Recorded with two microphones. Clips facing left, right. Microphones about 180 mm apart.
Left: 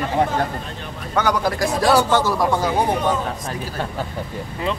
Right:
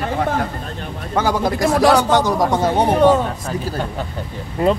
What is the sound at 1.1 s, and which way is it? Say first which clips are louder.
Speech: right 2 dB; 25° right (ahead or behind).